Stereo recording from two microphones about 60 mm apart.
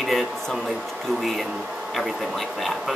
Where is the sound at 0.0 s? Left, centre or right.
Centre.